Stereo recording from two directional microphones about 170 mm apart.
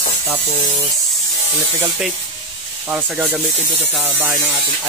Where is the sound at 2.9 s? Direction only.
10° right (ahead or behind).